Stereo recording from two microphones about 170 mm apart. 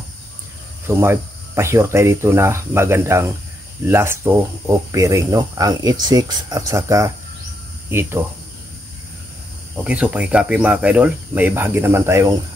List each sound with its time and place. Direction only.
0.8 s speech: 15° right (ahead or behind)
9.8 s speech: 5° right (ahead or behind)